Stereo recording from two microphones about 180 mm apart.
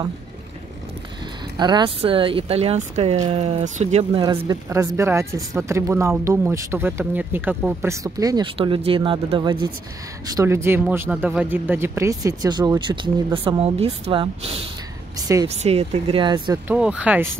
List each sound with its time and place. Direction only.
1.6 s speech: 25° right (ahead or behind)
4.3 s speech: 20° right (ahead or behind)
10.3 s speech: 15° right (ahead or behind); by 14.6 s 30° right (ahead or behind)
15.1 s speech: 20° right (ahead or behind)
15.4 s speech: 35° right (ahead or behind)
16.6 s speech: 5° right (ahead or behind)